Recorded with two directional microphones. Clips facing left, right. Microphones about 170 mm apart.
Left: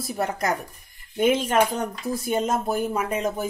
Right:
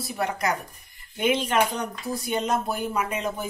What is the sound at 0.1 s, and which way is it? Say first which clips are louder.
A woman's voice: left 1 dB; 45° left (ahead or behind).